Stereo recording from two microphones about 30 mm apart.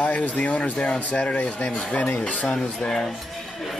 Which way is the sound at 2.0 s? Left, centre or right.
Left.